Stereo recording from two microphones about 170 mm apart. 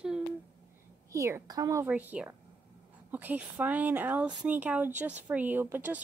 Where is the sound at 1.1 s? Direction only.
15° right (ahead or behind).